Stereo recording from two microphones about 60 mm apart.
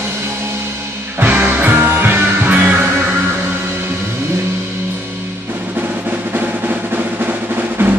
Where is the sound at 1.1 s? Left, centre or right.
Right.